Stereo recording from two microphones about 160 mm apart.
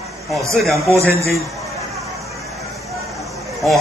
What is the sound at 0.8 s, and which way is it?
Speech, 20° right (ahead or behind).